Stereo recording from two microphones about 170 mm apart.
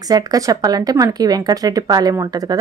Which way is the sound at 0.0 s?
20° right (ahead or behind).